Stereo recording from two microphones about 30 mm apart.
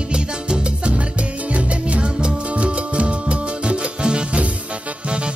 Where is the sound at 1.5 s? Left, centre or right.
Right.